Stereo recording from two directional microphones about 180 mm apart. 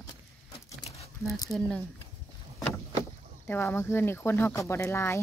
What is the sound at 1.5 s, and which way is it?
Speech, 5° left (ahead or behind).